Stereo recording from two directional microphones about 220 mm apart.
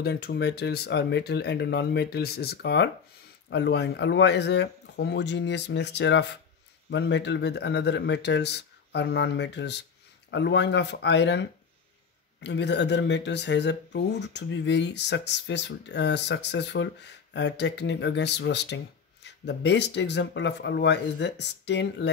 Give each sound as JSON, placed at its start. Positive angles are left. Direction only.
{"t": 0.0, "sound": "speech", "side_deg": 45}